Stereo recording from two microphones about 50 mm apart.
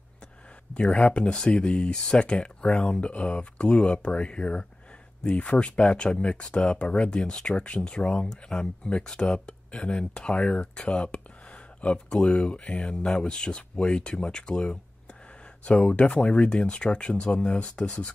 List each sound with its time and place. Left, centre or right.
0.7 s speech: centre